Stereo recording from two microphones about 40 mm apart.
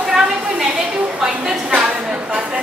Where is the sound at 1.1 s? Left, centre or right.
Centre.